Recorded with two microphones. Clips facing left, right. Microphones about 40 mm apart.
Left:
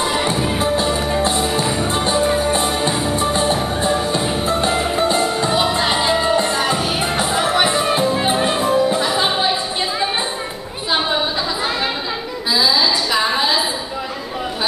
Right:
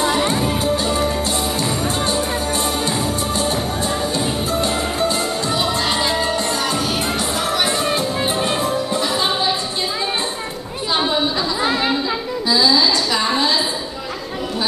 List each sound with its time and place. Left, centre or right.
0.1 s music: centre
12.4 s music: centre